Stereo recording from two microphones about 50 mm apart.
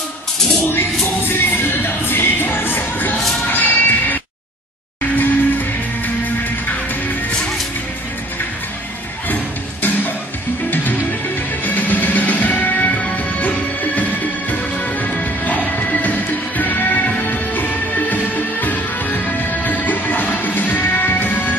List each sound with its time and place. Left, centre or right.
1.2 s music: left
9.3 s music: left